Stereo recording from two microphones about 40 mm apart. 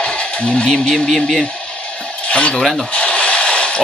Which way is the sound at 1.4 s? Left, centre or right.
Left.